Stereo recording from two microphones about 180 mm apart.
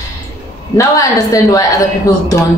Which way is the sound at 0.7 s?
20° left (ahead or behind).